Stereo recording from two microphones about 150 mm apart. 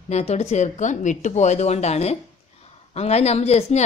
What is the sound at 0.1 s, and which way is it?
A woman's voice, 45° left (ahead or behind).